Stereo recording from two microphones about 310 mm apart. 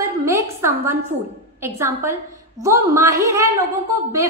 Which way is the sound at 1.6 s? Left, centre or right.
Centre.